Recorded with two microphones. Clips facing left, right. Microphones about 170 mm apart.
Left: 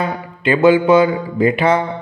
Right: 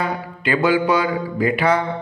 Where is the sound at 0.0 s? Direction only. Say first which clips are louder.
Left 3 dB; 25° left (ahead or behind).